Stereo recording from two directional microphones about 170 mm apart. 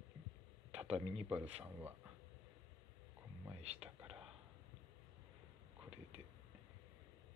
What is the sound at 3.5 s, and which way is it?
Speech, 40° right (ahead or behind).